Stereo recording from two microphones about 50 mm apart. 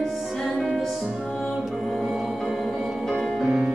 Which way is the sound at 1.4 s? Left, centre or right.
Centre.